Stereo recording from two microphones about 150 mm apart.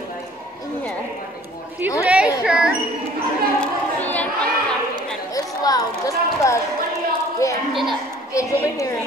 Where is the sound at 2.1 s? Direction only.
5° right (ahead or behind).